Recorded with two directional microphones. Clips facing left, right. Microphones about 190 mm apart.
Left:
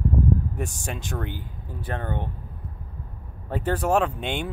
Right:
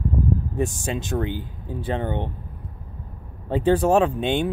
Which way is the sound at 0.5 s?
90° right.